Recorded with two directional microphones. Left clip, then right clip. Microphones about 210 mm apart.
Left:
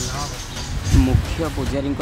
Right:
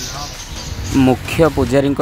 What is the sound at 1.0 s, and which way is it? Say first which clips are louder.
Speech: right 15 dB; 35° right (ahead or behind).